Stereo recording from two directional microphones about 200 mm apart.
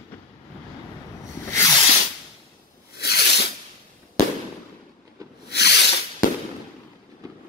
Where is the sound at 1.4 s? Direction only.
15° left (ahead or behind).